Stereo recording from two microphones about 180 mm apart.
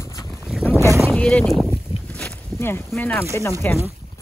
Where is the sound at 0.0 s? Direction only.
20° left (ahead or behind).